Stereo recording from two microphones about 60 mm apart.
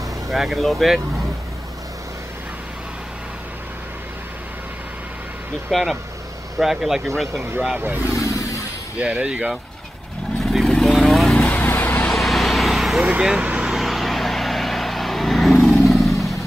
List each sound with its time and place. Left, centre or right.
0.3 s speech: centre
5.7 s speech: centre
7.3 s speech: right
8.2 s a sound: left
8.9 s speech: right
10.4 s vehicle: centre
11.3 s vehicle: left
12.1 s vehicle: centre
13.2 s vehicle: centre
13.7 s vehicle: centre